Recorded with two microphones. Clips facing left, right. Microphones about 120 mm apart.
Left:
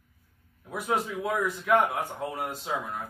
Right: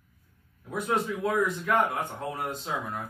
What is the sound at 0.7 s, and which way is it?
Speech, 5° left (ahead or behind).